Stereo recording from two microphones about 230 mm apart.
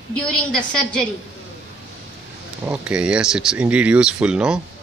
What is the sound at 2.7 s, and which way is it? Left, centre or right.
Speech, centre.